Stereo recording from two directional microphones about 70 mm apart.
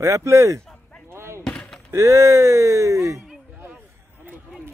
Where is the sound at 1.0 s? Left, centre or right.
Right.